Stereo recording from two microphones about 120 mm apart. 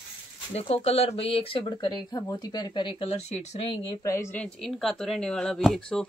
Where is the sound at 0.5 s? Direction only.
60° left (ahead or behind); by 3.1 s 40° left (ahead or behind).